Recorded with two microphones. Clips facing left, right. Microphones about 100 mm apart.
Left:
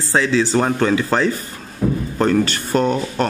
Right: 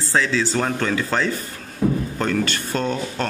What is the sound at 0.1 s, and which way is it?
A man's voice, 25° left (ahead or behind).